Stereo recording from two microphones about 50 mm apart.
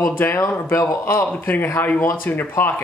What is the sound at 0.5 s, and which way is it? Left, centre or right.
Speech, left.